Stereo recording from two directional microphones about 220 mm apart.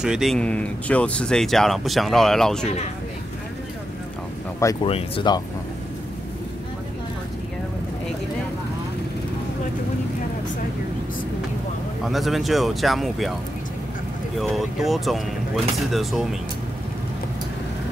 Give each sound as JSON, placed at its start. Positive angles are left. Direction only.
{"t": 0.0, "sound": "speech", "side_deg": 0}
{"t": 4.8, "sound": "speech", "side_deg": 25}
{"t": 12.1, "sound": "speech", "side_deg": 0}
{"t": 14.4, "sound": "speech", "side_deg": 0}